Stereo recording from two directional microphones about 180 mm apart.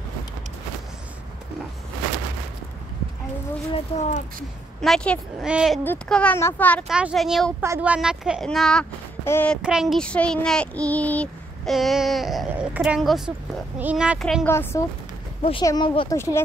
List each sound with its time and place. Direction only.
3.7 s speech: 40° left (ahead or behind)
4.8 s a child's voice: 5° left (ahead or behind)
6.9 s a child's voice: 5° right (ahead or behind)
7.6 s a child's voice: 10° right (ahead or behind); by 9.6 s 10° left (ahead or behind)
9.6 s a child's voice: 5° right (ahead or behind)
14.4 s speech: 10° left (ahead or behind)
15.6 s speech: 25° left (ahead or behind)
16.1 s speech: 15° left (ahead or behind)